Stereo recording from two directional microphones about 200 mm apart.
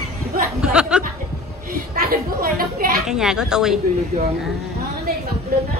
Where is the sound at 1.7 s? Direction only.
45° right (ahead or behind).